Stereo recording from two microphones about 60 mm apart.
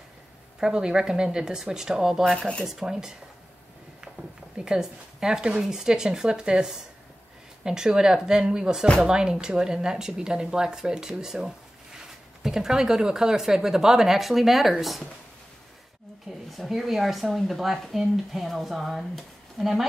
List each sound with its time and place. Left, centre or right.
0.6 s speech: centre
4.6 s speech: centre
16.5 s speech: centre